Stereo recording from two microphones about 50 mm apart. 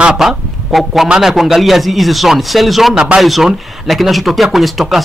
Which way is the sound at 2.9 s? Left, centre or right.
Centre.